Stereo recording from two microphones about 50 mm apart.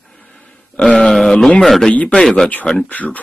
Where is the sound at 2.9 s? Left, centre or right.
Left.